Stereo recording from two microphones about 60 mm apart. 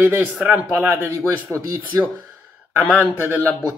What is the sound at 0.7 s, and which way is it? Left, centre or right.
Speech, right.